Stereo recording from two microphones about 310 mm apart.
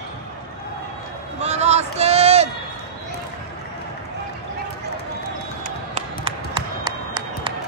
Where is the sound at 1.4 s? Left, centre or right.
Right.